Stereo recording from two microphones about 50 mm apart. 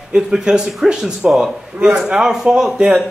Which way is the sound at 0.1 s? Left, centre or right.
Centre.